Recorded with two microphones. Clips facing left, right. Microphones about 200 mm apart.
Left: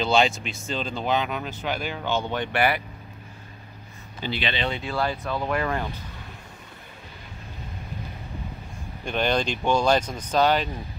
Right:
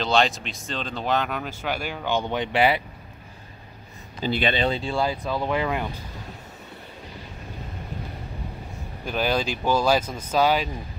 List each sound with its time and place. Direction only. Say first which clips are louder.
0.0 s speech: left 1 dB; centre (ahead or behind); by 2.8 s 25° right (ahead or behind)
4.2 s speech: right 5 dB; 45° right (ahead or behind)
4.6 s speech: right 4 dB; 30° right (ahead or behind)
4.9 s speech: right 2 dB; 10° right (ahead or behind)
9.0 s speech: even; 5° right (ahead or behind)